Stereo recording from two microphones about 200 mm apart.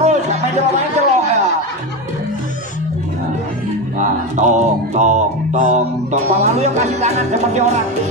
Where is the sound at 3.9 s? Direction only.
40° right (ahead or behind).